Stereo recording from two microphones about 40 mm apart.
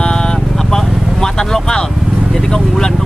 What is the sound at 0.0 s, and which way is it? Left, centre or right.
Vehicle, centre.